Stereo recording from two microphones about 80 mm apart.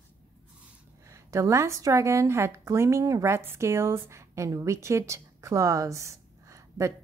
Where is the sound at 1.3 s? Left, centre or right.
Right.